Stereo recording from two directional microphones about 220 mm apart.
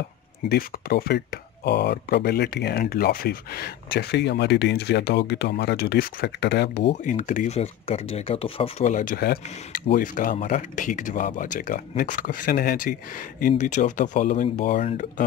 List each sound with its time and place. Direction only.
0.5 s speech: 45° left (ahead or behind)
7.1 s speech: 35° left (ahead or behind)